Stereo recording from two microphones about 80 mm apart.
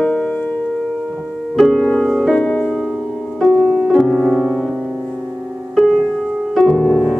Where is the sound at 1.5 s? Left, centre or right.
Centre.